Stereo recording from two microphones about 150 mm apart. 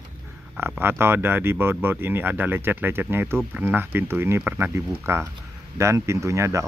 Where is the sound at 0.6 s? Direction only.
15° right (ahead or behind).